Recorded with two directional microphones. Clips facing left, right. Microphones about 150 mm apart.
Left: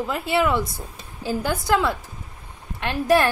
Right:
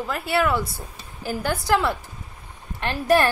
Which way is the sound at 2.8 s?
15° left (ahead or behind).